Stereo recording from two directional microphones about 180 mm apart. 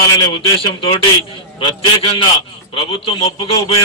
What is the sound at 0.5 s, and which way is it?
Speech, 30° left (ahead or behind).